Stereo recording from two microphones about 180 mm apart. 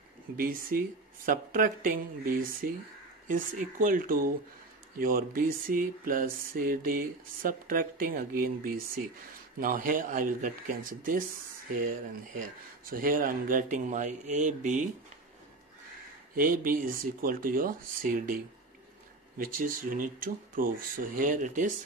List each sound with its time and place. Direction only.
0.4 s speech: 55° right (ahead or behind)
12.9 s speech: 50° right (ahead or behind)
16.3 s speech: 50° right (ahead or behind)